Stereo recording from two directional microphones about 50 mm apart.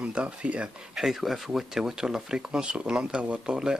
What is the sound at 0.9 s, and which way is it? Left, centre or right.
Speech, centre.